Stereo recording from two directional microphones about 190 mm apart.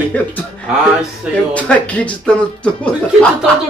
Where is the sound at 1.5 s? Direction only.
5° left (ahead or behind).